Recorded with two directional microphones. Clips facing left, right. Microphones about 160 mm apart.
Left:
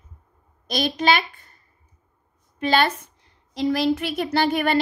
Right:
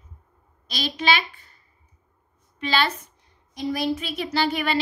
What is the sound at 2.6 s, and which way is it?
Speech, 45° left (ahead or behind).